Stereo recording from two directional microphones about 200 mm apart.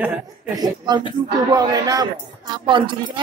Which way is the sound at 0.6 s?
20° right (ahead or behind).